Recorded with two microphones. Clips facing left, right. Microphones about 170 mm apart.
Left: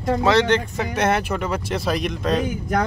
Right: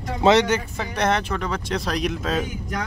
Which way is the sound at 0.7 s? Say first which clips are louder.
Left 2 dB; 5° left (ahead or behind).